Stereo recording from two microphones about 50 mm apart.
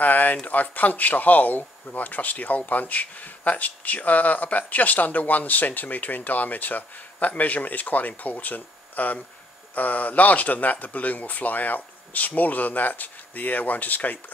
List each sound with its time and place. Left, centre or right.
0.0 s speech: left